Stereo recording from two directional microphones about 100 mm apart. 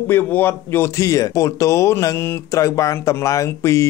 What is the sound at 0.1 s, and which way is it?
Speech, 20° left (ahead or behind).